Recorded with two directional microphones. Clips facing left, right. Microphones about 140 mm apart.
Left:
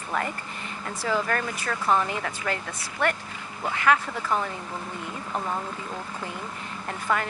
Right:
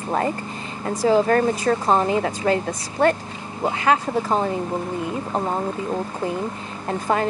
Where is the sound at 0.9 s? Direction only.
35° right (ahead or behind).